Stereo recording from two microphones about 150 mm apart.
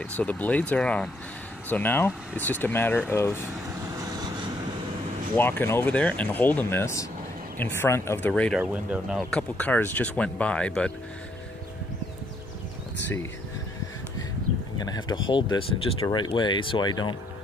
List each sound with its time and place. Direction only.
0.2 s speech: 10° left (ahead or behind)
5.4 s speech: 15° left (ahead or behind)
8.5 s speech: 10° right (ahead or behind)
9.3 s speech: 10° left (ahead or behind)
14.8 s speech: 30° left (ahead or behind)